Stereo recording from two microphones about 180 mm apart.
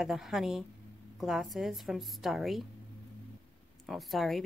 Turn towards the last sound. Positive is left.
turn(degrees=0)  # may be behind; listen again after turning